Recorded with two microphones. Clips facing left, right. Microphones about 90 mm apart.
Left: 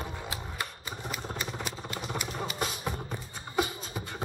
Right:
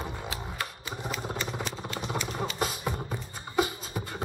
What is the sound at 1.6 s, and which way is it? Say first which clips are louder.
Vehicle: right 2 dB; 5° left (ahead or behind).